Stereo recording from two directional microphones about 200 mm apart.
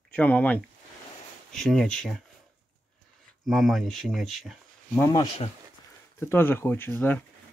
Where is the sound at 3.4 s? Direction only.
Centre (ahead or behind).